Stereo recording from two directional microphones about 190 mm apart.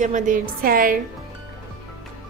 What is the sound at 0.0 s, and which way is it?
Speech, 40° right (ahead or behind).